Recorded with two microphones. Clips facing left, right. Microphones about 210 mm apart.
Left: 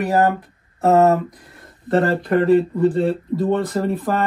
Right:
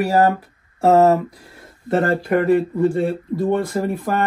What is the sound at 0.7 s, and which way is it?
Speech, 30° right (ahead or behind).